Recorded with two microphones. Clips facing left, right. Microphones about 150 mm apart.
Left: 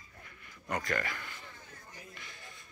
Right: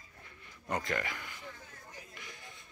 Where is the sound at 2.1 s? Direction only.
15° right (ahead or behind).